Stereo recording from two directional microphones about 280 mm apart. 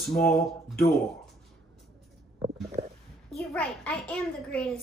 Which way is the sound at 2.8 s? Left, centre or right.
Right.